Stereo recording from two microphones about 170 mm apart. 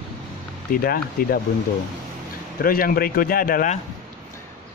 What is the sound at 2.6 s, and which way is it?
Speech, 60° left (ahead or behind).